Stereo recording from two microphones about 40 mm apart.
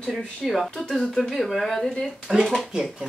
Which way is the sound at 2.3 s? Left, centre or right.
Centre.